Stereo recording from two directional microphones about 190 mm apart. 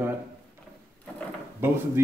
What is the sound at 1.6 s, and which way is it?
Speech, 10° right (ahead or behind).